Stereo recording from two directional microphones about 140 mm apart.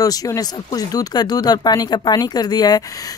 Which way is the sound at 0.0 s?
25° left (ahead or behind).